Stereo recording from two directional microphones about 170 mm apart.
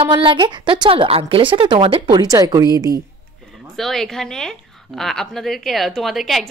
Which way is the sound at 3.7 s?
Centre (ahead or behind).